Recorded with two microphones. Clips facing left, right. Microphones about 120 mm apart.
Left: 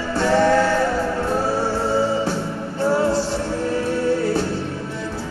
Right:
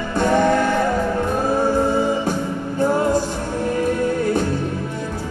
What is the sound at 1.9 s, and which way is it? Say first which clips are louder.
Music: even; 15° right (ahead or behind).